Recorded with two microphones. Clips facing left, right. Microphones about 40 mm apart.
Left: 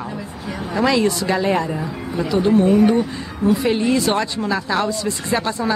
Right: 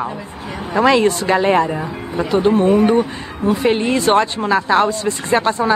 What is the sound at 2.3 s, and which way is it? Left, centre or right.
Speech, right.